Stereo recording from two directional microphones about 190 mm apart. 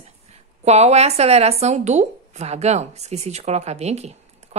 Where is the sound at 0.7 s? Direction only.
35° right (ahead or behind).